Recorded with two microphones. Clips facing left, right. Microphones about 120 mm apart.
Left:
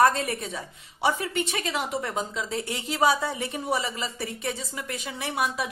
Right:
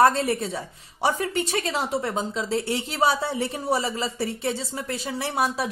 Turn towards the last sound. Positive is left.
turn(degrees=-35)  # may be behind; listen again after turning